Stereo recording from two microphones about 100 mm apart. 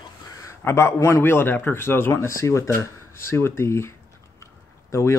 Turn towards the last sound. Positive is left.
turn(degrees=30)  # may be behind; listen again after turning